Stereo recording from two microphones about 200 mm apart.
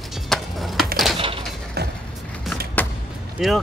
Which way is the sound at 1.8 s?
55° right (ahead or behind).